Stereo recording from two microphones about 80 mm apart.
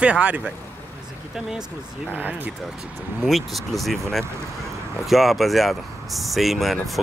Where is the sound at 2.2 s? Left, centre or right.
Right.